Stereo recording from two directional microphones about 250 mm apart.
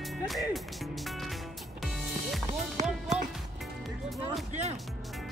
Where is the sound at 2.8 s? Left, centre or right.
Right.